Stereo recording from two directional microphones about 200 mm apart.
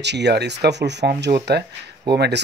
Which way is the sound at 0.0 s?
60° right (ahead or behind).